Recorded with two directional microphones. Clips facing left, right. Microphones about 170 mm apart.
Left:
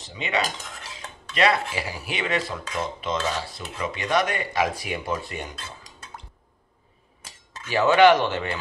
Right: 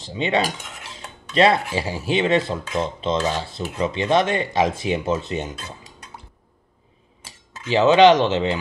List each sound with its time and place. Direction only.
0.1 s speech: 30° right (ahead or behind)
0.4 s cutlery: 10° right (ahead or behind)
1.3 s speech: 30° right (ahead or behind)
7.6 s speech: 20° right (ahead or behind)